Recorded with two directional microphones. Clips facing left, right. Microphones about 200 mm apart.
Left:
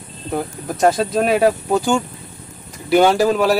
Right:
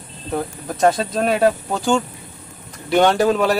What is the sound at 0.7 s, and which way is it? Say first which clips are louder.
Speech: left 1 dB; 5° left (ahead or behind).